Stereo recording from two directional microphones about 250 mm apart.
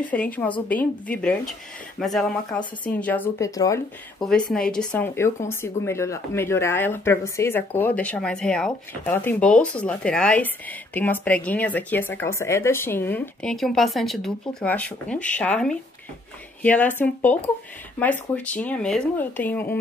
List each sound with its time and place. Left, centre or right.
0.1 s speech: centre
4.2 s speech: centre